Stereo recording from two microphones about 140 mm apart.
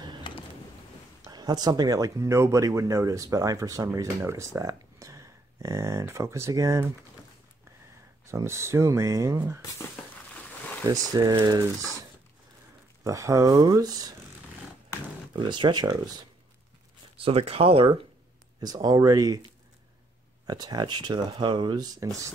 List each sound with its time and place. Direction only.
1.2 s speech: 30° right (ahead or behind)
8.3 s speech: 20° right (ahead or behind)
10.3 s a sound: 10° left (ahead or behind)
11.1 s speech: 30° right (ahead or behind)
13.0 s speech: 20° right (ahead or behind)
15.3 s speech: 35° right (ahead or behind)
17.2 s speech: 45° right (ahead or behind)
18.6 s speech: 30° right (ahead or behind)
20.4 s speech: 30° right (ahead or behind)